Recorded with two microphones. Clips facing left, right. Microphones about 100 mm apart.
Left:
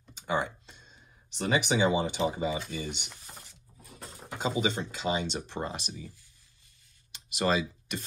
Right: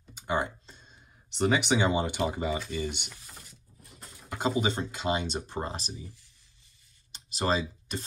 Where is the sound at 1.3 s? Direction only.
60° right (ahead or behind).